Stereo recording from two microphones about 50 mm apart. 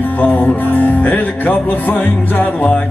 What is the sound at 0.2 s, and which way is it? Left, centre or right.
Music, left.